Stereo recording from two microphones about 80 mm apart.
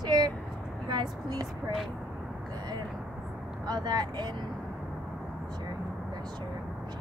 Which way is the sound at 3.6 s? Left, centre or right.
Right.